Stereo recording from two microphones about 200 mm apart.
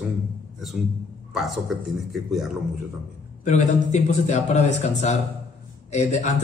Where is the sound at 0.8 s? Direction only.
45° right (ahead or behind).